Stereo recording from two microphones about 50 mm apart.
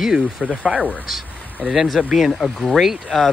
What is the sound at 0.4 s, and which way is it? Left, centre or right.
Speech, right.